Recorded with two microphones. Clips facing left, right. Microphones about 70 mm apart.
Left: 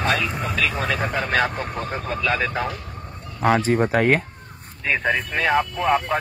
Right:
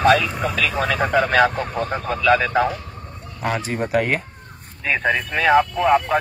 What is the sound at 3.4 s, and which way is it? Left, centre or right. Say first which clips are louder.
Speech: left 5 dB; left.